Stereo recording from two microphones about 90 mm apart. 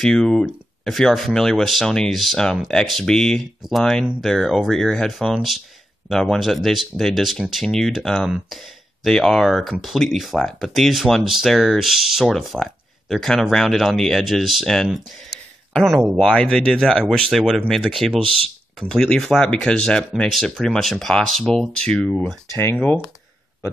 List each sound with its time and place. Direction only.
0.0 s speech: 5° left (ahead or behind)
18.2 s speech: 90° right
18.8 s speech: 5° left (ahead or behind)